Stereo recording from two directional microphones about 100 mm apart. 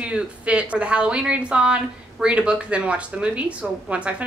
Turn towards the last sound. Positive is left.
turn(degrees=-15)  # may be behind; listen again after turning